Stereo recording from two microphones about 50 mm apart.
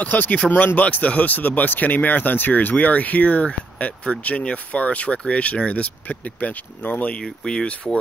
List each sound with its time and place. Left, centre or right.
0.0 s speech: left